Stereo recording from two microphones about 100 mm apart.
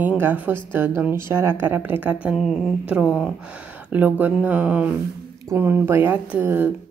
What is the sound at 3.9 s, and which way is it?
A woman's voice, 15° right (ahead or behind).